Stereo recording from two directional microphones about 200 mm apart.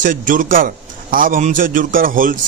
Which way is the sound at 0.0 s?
40° right (ahead or behind).